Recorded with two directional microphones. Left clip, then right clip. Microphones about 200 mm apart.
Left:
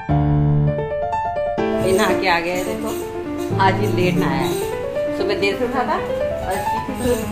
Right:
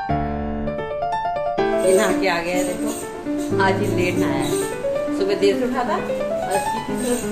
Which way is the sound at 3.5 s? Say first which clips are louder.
Left 2 dB; 25° left (ahead or behind).